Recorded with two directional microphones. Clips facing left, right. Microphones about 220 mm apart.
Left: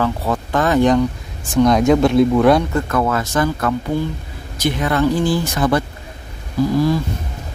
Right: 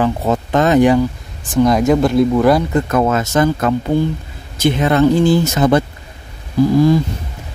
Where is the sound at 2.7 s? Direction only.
20° right (ahead or behind).